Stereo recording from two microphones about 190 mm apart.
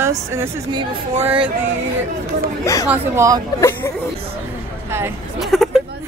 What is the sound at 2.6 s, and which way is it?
Speech, 15° left (ahead or behind).